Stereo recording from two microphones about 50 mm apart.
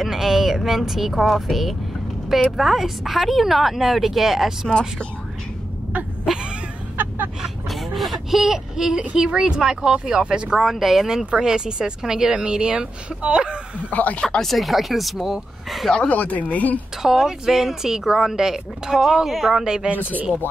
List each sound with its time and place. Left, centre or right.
0.0 s a woman's voice: centre
7.4 s a sound: centre
9.1 s speech: centre
10.6 s a woman's voice: centre; by 13.6 s right
13.8 s speech: left
14.2 s speech: centre
14.5 s a woman's voice: centre
16.1 s speech: left
17.0 s speech: centre